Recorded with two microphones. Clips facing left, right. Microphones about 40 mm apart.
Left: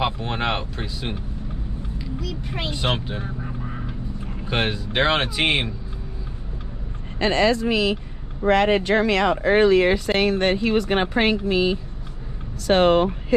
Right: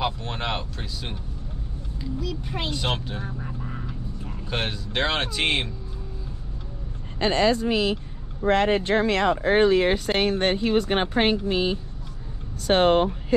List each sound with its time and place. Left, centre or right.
0.0 s speech: left
2.7 s speech: left
4.5 s speech: left
7.2 s speech: left
8.5 s speech: left
9.4 s speech: left
11.1 s speech: left